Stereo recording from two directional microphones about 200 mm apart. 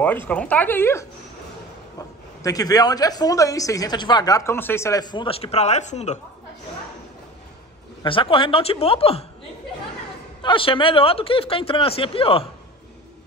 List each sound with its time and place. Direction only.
0.3 s a woman's voice: 5° left (ahead or behind); by 6.1 s 35° left (ahead or behind)
8.0 s a woman's voice: 25° left (ahead or behind)
10.4 s a woman's voice: 25° left (ahead or behind)